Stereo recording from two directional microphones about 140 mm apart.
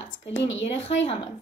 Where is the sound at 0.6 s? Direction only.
50° left (ahead or behind).